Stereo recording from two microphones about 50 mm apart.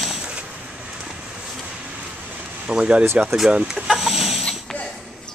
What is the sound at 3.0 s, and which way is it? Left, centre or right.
Speech, right.